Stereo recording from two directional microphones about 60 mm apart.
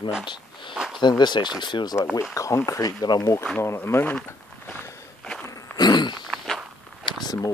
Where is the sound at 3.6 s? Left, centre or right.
Left.